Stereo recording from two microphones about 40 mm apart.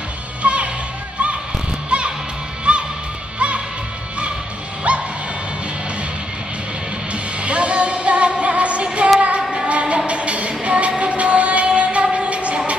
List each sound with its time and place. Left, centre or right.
0.4 s music: right
1.9 s music: right
4.9 s music: right
7.4 s music: right